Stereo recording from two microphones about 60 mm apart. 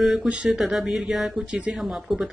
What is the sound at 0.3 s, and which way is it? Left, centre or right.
Speech, centre.